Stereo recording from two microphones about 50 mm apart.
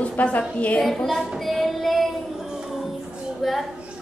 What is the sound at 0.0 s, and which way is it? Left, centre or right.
Speech, left.